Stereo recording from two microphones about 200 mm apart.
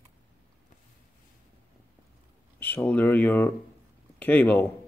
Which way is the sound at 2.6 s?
10° left (ahead or behind).